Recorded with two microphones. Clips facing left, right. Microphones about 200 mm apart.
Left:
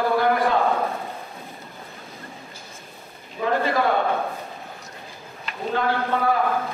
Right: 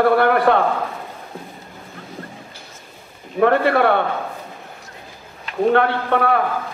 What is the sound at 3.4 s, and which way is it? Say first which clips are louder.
Speech: right 7 dB; 65° right (ahead or behind).